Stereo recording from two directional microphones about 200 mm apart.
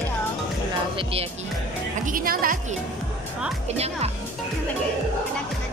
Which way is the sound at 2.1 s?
45° right (ahead or behind).